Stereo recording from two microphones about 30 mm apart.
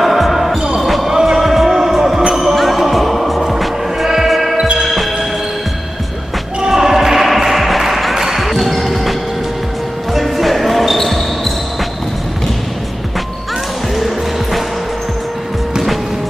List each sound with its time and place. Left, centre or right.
0.0 s basketball bounce: centre
1.0 s basketball bounce: centre
1.4 s music: centre
4.6 s basketball bounce: right
6.7 s music: centre
10.2 s basketball bounce: centre
13.9 s music: centre